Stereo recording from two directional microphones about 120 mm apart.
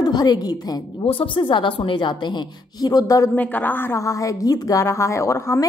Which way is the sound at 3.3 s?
15° left (ahead or behind).